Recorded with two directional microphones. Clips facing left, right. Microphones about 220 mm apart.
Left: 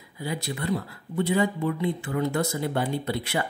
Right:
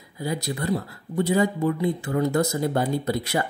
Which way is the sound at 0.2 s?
40° right (ahead or behind).